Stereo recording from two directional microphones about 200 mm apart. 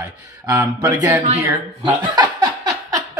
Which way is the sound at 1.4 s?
15° right (ahead or behind).